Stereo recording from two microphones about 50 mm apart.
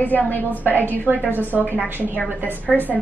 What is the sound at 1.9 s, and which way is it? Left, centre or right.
Speech, right.